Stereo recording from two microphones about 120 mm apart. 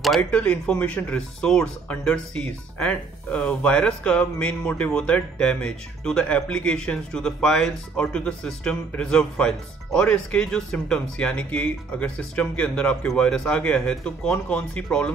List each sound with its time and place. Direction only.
0.2 s speech: 10° left (ahead or behind)